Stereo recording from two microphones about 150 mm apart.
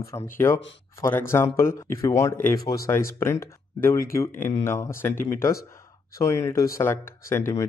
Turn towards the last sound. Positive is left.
turn(degrees=20)  # may be behind; listen again after turning